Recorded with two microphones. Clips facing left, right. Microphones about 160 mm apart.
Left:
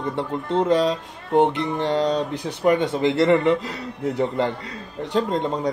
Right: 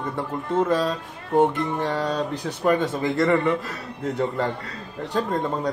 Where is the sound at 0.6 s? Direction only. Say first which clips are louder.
Left 3 dB; 20° left (ahead or behind).